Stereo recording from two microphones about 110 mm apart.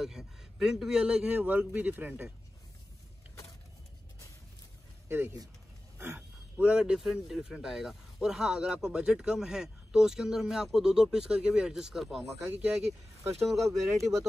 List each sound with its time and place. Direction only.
0.0 s a man's voice: 5° right (ahead or behind)
5.0 s vehicle: 20° right (ahead or behind)
5.9 s a man's voice: 20° right (ahead or behind)
13.4 s speech: centre (ahead or behind)